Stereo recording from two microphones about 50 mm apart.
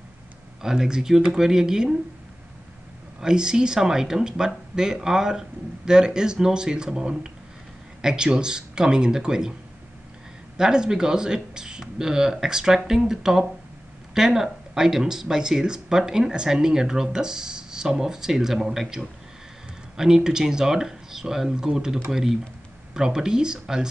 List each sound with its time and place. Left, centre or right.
0.6 s speech: centre
3.2 s speech: centre
10.6 s speech: centre